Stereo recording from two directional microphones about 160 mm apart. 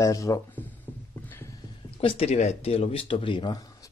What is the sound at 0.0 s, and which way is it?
Speech, 20° left (ahead or behind).